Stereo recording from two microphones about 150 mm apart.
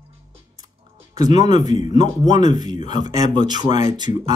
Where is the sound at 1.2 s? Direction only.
55° left (ahead or behind).